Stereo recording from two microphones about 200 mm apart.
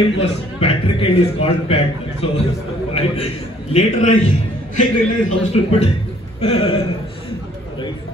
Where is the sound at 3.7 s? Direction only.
35° left (ahead or behind).